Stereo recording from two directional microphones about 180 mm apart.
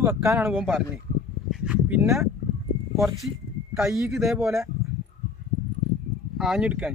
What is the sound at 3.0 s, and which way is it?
Speech, centre (ahead or behind).